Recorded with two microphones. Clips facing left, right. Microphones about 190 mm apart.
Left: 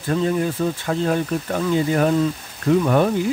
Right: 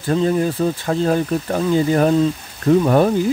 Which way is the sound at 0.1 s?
35° right (ahead or behind).